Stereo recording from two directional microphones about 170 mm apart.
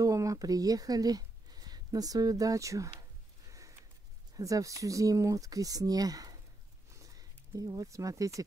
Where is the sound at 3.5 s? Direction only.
20° right (ahead or behind).